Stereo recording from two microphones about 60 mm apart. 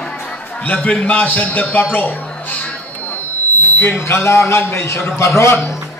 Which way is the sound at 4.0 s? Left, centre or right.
Left.